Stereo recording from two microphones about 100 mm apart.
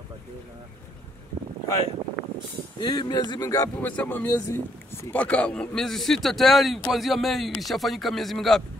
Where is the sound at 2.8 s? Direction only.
45° left (ahead or behind).